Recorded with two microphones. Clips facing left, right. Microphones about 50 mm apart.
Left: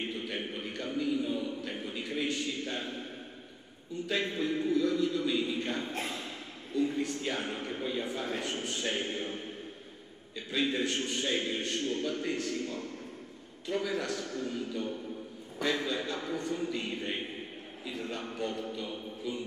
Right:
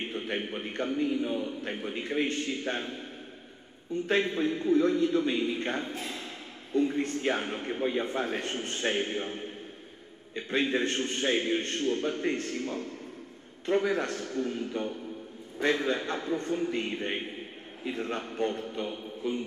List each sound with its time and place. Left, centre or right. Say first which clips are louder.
0.1 s a man's voice: right 3 dB; right
4.2 s a man's voice: right 3 dB; right
7.4 s a man's voice: right 4 dB; right
10.3 s a man's voice: right 3 dB; right